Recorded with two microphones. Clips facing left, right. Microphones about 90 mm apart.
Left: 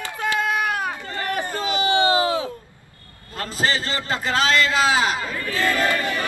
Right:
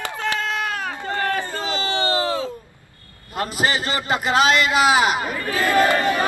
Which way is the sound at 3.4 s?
15° right (ahead or behind).